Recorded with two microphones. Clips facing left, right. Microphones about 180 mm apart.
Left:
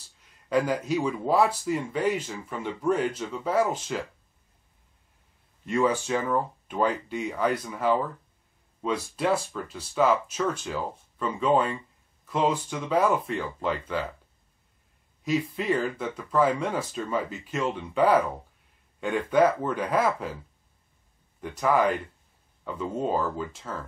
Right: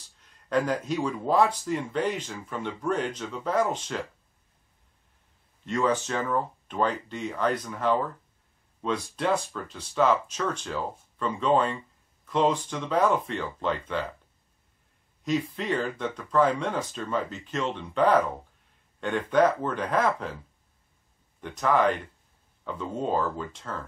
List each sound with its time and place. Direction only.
0.5 s speech: 5° left (ahead or behind)
5.7 s speech: 10° left (ahead or behind)
15.2 s speech: 5° left (ahead or behind)
21.4 s speech: 5° left (ahead or behind)